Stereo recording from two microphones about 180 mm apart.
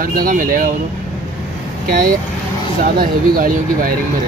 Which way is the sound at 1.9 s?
50° right (ahead or behind).